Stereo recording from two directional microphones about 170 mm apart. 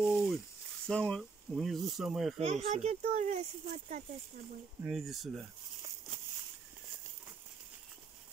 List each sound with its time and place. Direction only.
0.0 s sizzle: 5° right (ahead or behind)
0.8 s speech: 5° left (ahead or behind)
2.4 s speech: 40° right (ahead or behind)
4.8 s speech: centre (ahead or behind)